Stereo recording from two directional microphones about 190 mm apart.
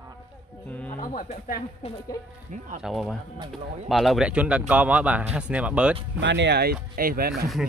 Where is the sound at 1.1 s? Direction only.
45° left (ahead or behind).